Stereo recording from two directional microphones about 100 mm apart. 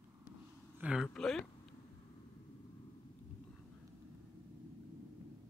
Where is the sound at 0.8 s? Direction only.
15° right (ahead or behind).